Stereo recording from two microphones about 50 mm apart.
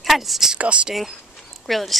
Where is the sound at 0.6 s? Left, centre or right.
Right.